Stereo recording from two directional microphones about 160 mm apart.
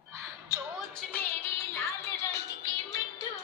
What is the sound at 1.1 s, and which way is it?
Music, 15° left (ahead or behind).